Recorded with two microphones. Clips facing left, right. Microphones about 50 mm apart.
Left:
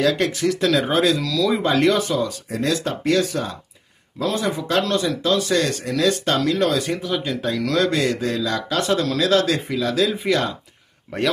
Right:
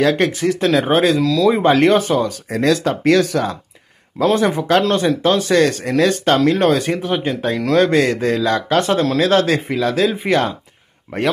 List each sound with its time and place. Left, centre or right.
0.0 s speech: right
4.2 s speech: right
7.9 s speech: right